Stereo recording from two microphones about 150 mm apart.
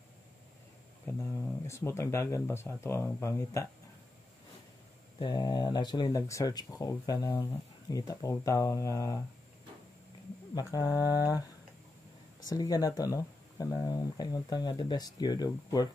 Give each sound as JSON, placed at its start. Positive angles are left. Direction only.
{"t": 1.0, "sound": "speech", "side_deg": 15}
{"t": 5.2, "sound": "speech", "side_deg": 30}
{"t": 10.5, "sound": "speech", "side_deg": 25}
{"t": 12.4, "sound": "speech", "side_deg": 25}